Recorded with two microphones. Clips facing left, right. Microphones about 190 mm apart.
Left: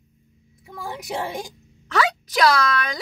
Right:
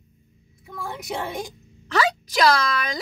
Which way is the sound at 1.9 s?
Centre (ahead or behind).